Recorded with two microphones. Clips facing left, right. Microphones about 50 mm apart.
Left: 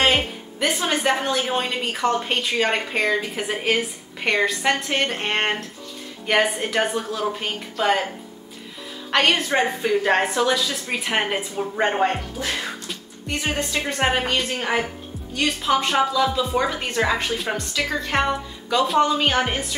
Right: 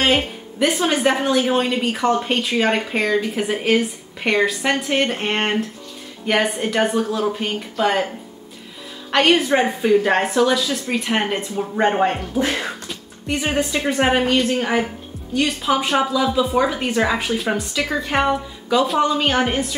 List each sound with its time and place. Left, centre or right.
0.0 s a woman's voice: centre
9.1 s a woman's voice: centre
12.4 s speech: right
12.8 s a woman's voice: centre